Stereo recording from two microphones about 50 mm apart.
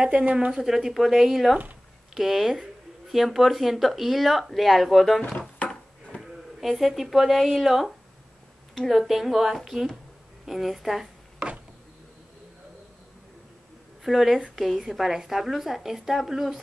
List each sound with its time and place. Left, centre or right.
0.2 s speech: right
0.5 s speech: centre
5.7 s a sound: centre
6.6 s speech: centre
14.0 s speech: centre